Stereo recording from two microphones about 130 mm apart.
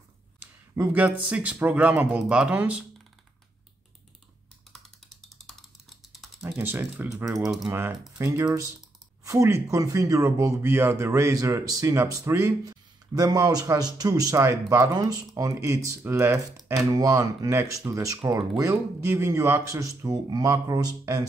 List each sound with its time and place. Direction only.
0.4 s speech: 10° right (ahead or behind)
5.2 s computer keyboard: centre (ahead or behind)
6.6 s speech: 15° right (ahead or behind)